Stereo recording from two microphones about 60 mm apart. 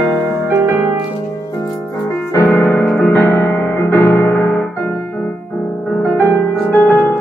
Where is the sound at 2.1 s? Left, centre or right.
Left.